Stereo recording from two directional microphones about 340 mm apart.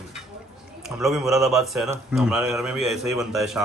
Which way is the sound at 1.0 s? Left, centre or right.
Centre.